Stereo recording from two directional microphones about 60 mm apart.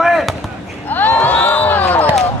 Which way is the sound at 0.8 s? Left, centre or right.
Left.